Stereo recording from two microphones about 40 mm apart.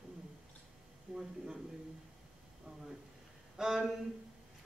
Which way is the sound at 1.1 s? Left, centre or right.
Centre.